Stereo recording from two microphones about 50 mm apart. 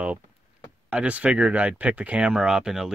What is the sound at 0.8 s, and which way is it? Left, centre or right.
Speech, right.